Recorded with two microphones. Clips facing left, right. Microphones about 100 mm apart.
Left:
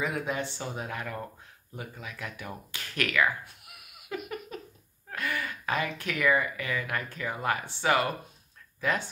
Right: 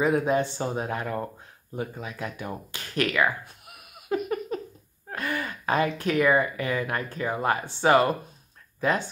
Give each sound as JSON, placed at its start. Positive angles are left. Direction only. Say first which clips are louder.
{"t": 0.0, "sound": "speech", "louder": "right 8 dB", "side_deg": -35}
{"t": 4.1, "sound": "a sound", "louder": "right 9 dB", "side_deg": -40}
{"t": 5.1, "sound": "speech", "louder": "right 3 dB", "side_deg": -35}